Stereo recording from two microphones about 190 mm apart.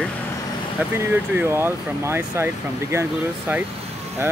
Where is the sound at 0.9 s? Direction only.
10° right (ahead or behind).